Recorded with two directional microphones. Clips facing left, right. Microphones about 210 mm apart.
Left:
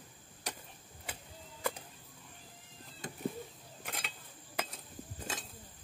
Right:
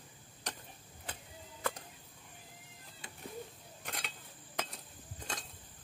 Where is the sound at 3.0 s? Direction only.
45° left (ahead or behind).